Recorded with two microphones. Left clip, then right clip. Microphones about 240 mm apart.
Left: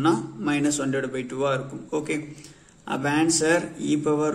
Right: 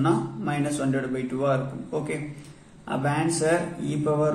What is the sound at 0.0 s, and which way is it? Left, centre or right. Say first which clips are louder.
A man's voice: left 2 dB; left.